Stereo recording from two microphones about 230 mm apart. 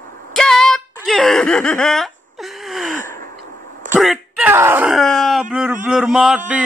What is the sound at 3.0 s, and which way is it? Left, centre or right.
Gasp, right.